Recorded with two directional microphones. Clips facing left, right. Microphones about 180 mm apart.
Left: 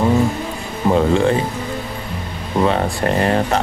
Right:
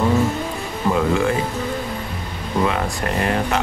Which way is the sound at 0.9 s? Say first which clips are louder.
Left 4 dB; 30° left (ahead or behind).